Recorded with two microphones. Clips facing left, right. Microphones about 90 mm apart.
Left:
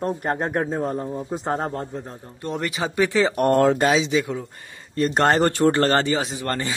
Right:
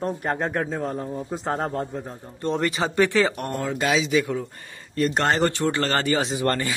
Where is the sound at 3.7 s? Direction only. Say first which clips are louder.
Left 2 dB; 30° left (ahead or behind).